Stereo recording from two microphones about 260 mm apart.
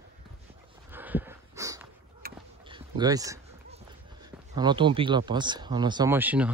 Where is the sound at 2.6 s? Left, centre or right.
Centre.